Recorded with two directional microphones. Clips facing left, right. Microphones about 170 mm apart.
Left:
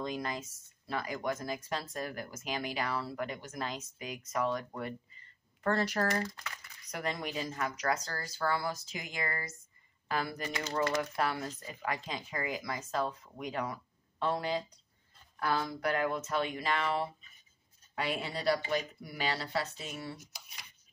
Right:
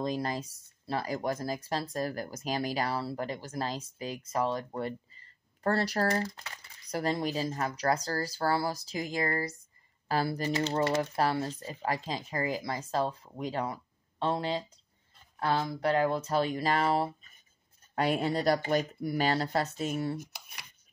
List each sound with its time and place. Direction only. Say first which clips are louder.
0.0 s speech: right 5 dB; 35° right (ahead or behind); by 20.6 s 55° right (ahead or behind)